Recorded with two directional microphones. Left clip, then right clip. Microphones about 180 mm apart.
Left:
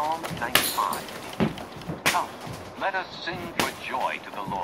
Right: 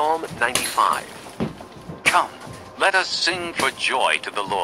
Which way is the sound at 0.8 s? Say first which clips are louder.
Right 8 dB; 45° right (ahead or behind).